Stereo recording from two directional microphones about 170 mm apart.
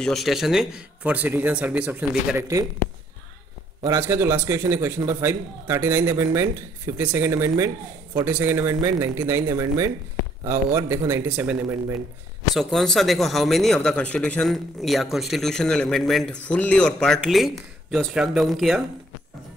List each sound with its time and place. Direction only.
0.0 s speech: centre (ahead or behind); by 2.6 s 15° right (ahead or behind)
3.8 s speech: 15° right (ahead or behind)
12.5 s speech: centre (ahead or behind)